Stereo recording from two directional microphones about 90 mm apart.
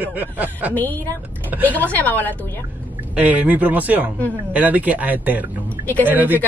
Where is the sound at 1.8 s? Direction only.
20° left (ahead or behind).